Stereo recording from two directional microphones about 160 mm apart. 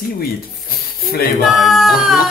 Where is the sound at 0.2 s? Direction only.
70° left (ahead or behind).